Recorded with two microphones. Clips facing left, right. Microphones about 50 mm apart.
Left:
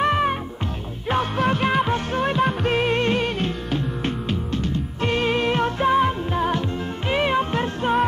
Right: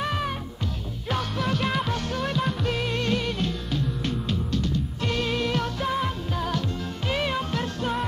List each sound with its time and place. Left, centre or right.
0.0 s music: left